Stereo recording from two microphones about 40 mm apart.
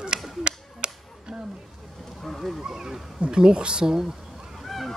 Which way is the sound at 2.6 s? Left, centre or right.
Centre.